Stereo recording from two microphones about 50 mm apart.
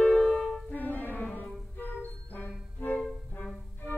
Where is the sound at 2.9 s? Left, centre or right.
Left.